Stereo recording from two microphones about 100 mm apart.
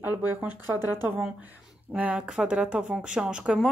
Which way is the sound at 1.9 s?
15° right (ahead or behind).